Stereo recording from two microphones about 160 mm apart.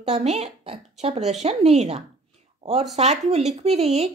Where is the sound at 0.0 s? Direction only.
45° right (ahead or behind).